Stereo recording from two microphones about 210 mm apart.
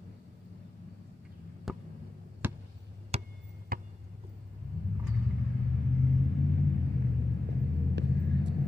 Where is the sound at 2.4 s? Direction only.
10° right (ahead or behind).